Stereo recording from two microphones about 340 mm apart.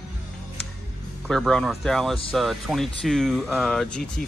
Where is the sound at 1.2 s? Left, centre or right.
Centre.